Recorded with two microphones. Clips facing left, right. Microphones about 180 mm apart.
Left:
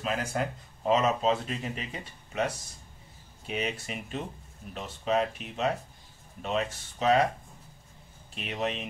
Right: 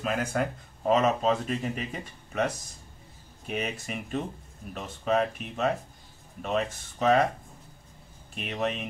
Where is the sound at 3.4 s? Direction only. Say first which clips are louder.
Right 1 dB; 50° right (ahead or behind).